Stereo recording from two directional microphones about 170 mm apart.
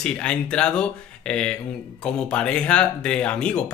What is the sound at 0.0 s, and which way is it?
Speech, 5° left (ahead or behind).